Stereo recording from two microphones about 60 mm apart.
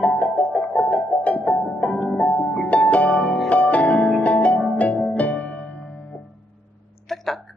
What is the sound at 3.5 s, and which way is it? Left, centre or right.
Music, left.